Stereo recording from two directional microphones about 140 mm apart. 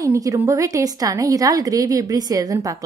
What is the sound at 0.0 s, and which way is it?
A woman's voice, 25° right (ahead or behind).